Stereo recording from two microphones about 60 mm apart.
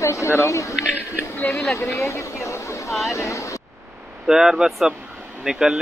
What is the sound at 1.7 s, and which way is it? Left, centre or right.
Speech, left.